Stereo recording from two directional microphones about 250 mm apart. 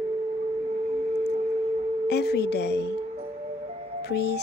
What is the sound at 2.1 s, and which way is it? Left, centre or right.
Speech, left.